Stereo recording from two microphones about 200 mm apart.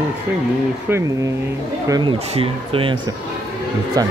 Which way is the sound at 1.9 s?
20° right (ahead or behind).